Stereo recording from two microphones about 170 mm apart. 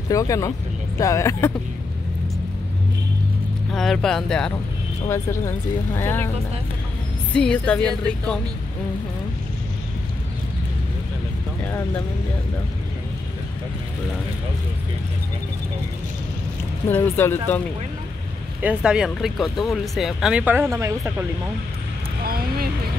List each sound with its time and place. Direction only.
0.1 s speech: 20° left (ahead or behind)
3.7 s speech: centre (ahead or behind)
5.1 s speech: 15° left (ahead or behind)
7.3 s speech: 5° left (ahead or behind)
11.6 s speech: 15° left (ahead or behind)
16.9 s speech: 10° left (ahead or behind)
18.6 s speech: 5° right (ahead or behind)
22.2 s speech: 60° right (ahead or behind)